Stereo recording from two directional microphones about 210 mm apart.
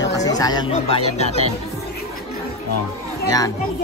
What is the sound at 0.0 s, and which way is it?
Chatter, 15° left (ahead or behind).